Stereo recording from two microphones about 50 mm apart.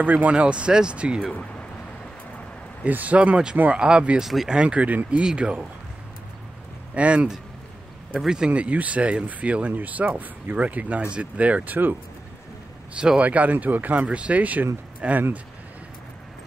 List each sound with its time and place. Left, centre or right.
0.0 s speech: right
0.3 s speech: right
1.3 s speech: left
2.9 s speech: right
4.2 s speech: centre
4.5 s speech: right
6.9 s speech: right
8.5 s speech: right
12.9 s speech: centre
13.2 s speech: right